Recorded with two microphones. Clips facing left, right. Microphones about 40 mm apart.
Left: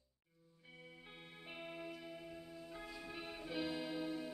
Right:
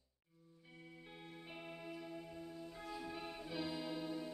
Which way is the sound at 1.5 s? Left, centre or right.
Centre.